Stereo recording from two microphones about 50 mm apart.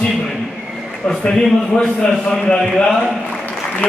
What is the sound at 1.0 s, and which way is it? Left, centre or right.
A man's voice, centre.